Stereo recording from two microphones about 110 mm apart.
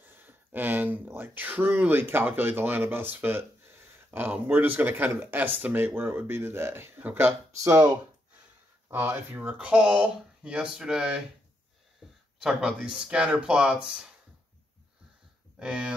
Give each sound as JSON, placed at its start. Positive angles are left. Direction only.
{"t": 0.0, "sound": "speech", "side_deg": -15}
{"t": 8.9, "sound": "speech", "side_deg": -15}
{"t": 12.0, "sound": "a sound", "side_deg": -5}
{"t": 12.4, "sound": "speech", "side_deg": -5}
{"t": 15.6, "sound": "speech", "side_deg": -10}